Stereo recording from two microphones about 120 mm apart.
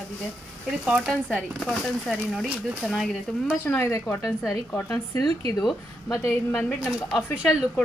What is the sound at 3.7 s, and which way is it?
Speech, 20° left (ahead or behind).